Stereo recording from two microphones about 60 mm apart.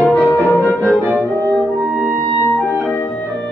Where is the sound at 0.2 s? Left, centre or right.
Left.